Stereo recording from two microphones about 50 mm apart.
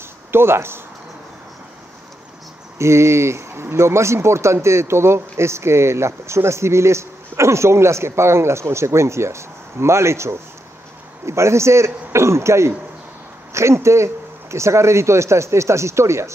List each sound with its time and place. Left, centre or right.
0.3 s speech: right
2.8 s speech: right
13.5 s a sound: right
13.7 s speech: right